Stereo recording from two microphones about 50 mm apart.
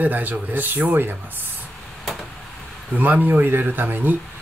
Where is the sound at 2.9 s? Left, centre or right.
Right.